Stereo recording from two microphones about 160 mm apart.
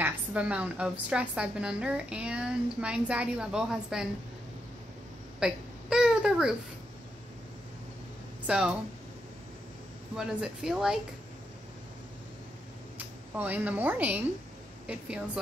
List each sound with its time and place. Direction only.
0.0 s a woman's voice: 10° right (ahead or behind)
5.4 s babbling: 5° right (ahead or behind)
8.5 s speech: 5° right (ahead or behind)
10.1 s speech: 5° right (ahead or behind)
12.9 s a woman's voice: 10° right (ahead or behind)